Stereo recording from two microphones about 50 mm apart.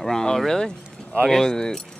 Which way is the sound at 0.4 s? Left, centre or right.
Centre.